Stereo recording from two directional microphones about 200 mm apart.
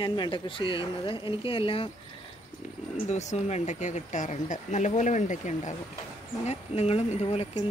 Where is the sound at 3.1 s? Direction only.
35° left (ahead or behind).